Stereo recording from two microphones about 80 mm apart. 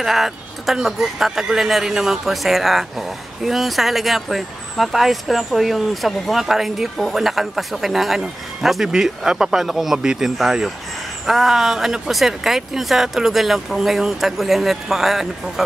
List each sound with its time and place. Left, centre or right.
0.0 s speech: centre